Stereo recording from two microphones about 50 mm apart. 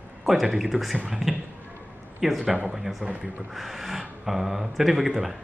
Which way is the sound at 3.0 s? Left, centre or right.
Centre.